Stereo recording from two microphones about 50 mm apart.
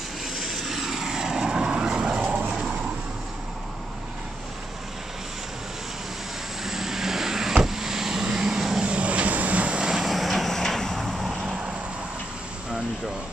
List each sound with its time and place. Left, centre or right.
0.4 s vehicle: centre; by 2.6 s right
6.6 s vehicle: centre
8.8 s vehicle: right
9.8 s vehicle: centre